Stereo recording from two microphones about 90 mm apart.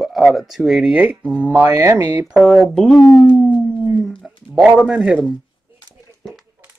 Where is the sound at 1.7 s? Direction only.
30° right (ahead or behind).